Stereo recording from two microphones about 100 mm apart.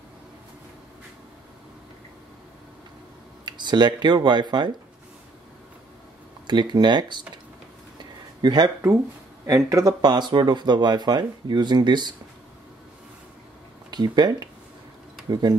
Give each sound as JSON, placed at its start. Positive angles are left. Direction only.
{"t": 3.4, "sound": "speech", "side_deg": -50}
{"t": 6.4, "sound": "speech", "side_deg": -50}
{"t": 8.0, "sound": "a sound", "side_deg": -45}
{"t": 9.7, "sound": "speech", "side_deg": -35}
{"t": 10.1, "sound": "speech", "side_deg": -50}
{"t": 13.8, "sound": "speech", "side_deg": -45}